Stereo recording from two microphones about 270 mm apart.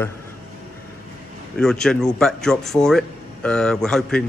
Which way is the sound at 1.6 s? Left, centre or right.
Centre.